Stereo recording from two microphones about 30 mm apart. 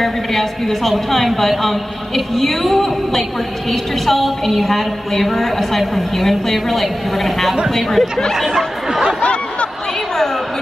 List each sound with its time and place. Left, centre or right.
0.0 s a woman's voice: centre
9.2 s snicker: left